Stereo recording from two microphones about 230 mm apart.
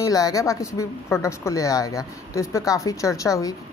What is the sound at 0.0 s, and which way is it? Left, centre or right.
Speech, centre.